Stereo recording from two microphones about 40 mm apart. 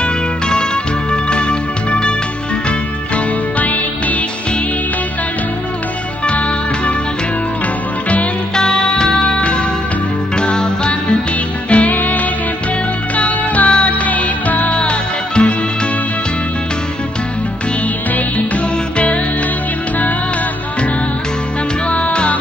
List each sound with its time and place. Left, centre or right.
0.0 s music: left
3.5 s music: left
6.2 s music: left
8.5 s music: centre
11.7 s music: left
14.7 s music: left
21.8 s music: left